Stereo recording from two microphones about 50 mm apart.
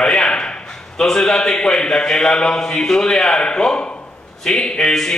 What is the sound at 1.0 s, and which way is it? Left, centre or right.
Speech, centre.